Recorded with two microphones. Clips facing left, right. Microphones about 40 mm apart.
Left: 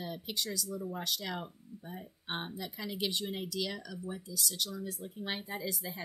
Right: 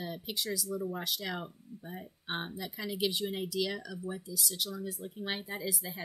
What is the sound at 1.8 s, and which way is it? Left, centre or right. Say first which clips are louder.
Speech: right 1 dB; centre.